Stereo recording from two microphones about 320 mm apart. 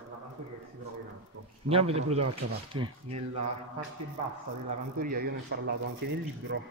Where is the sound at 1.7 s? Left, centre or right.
Centre.